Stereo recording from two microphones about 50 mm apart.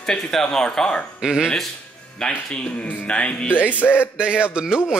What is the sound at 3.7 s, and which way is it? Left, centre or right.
Music, left.